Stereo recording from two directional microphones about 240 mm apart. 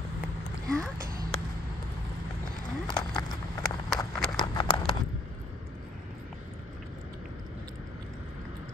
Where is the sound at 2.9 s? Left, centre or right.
Centre.